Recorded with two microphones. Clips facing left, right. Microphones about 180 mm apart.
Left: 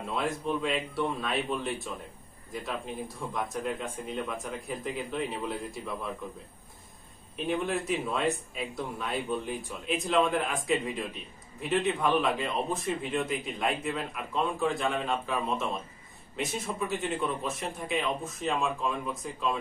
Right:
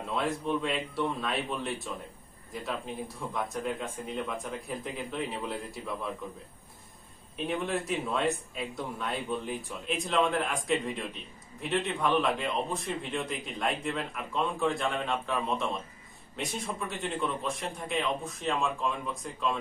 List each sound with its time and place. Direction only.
0.1 s a man's voice: centre (ahead or behind)
3.3 s a man's voice: centre (ahead or behind)
7.4 s a man's voice: centre (ahead or behind)